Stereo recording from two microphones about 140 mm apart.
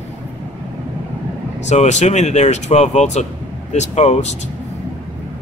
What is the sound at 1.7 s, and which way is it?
Speech, 55° left (ahead or behind).